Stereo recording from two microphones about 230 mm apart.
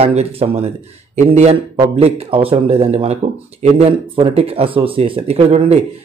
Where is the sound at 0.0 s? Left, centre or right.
Right.